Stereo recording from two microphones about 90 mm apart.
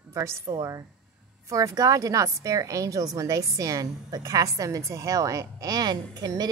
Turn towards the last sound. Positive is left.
turn(degrees=-45)  # may be behind; listen again after turning